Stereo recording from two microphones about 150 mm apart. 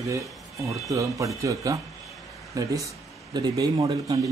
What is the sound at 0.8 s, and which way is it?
Speech, 20° right (ahead or behind).